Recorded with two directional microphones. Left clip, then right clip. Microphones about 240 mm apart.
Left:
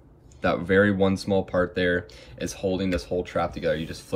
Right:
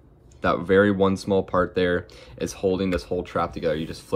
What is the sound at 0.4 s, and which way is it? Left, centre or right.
Speech, centre.